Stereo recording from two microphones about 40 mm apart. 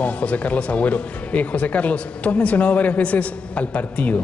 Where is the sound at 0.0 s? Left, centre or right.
Left.